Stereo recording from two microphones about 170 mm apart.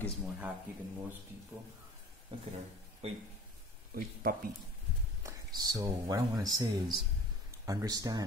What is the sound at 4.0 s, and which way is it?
Speech, 60° right (ahead or behind).